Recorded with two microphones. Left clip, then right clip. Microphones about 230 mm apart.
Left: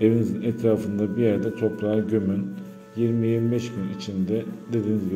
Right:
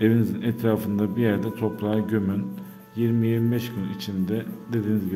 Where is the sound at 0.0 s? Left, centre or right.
Right.